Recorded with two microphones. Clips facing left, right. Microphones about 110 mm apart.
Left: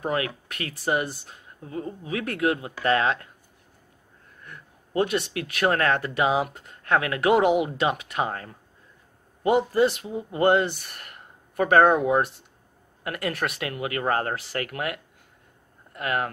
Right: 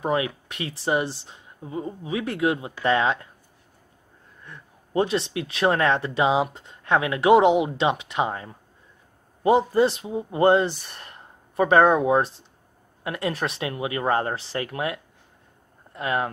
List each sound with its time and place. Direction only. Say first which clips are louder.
0.0 s speech: right 3 dB; 20° right (ahead or behind)
4.5 s speech: right 2 dB; 30° right (ahead or behind)